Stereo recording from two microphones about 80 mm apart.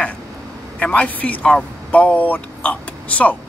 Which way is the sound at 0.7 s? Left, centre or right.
Centre.